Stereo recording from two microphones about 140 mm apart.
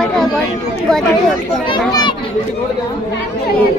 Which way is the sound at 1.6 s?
35° left (ahead or behind).